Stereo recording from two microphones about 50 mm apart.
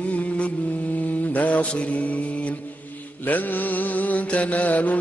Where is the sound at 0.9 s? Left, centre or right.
Left.